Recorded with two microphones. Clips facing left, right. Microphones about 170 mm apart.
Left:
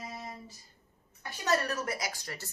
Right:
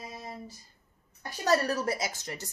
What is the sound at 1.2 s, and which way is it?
A woman's voice, 35° right (ahead or behind).